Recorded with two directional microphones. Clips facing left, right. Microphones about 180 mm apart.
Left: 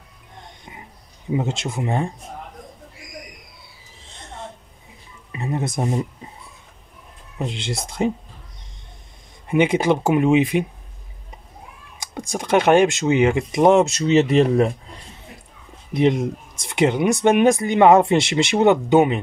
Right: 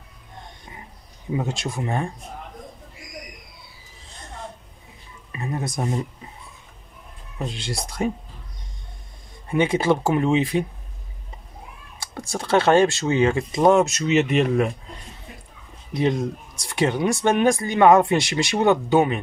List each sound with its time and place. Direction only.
1.3 s speech: 20° left (ahead or behind)
5.3 s speech: 20° left (ahead or behind)
7.4 s speech: 20° left (ahead or behind)
9.5 s speech: 20° left (ahead or behind)
12.0 s speech: 15° left (ahead or behind); by 14.7 s 35° left (ahead or behind)
15.9 s speech: 20° left (ahead or behind)